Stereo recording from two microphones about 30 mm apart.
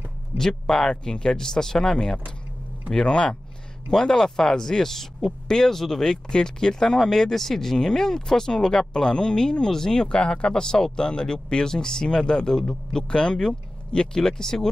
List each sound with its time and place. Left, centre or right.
0.4 s speech: left
10.0 s speech: left
10.5 s speech: left